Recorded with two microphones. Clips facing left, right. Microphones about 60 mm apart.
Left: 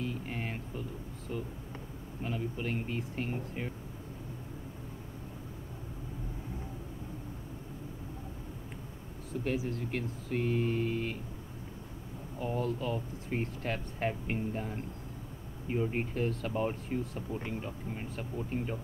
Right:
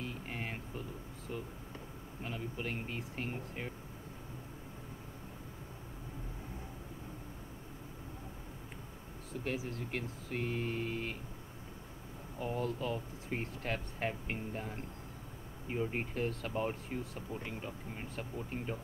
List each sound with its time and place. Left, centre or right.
0.0 s music: centre
2.2 s speech: centre
9.3 s speech: centre
12.4 s speech: centre